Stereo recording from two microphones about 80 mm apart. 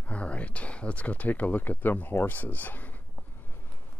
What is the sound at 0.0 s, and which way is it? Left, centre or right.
Speech, centre.